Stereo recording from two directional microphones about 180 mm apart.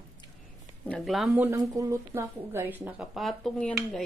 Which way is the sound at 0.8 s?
5° left (ahead or behind).